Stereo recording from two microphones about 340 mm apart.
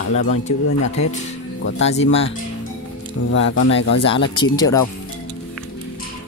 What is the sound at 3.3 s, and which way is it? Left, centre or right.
Speech, left.